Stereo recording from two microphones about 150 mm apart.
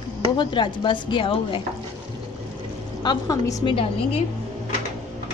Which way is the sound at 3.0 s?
25° left (ahead or behind).